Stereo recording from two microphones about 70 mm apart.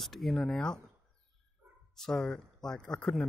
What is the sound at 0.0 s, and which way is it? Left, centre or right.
Speech, centre.